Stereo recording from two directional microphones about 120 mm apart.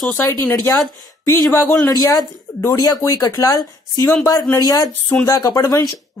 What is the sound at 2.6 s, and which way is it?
Speech, 30° left (ahead or behind).